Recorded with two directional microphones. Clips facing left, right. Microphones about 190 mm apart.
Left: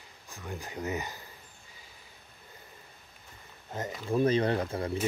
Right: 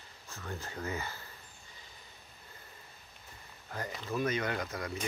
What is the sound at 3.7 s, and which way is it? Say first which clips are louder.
Speech: left 6 dB; 25° left (ahead or behind).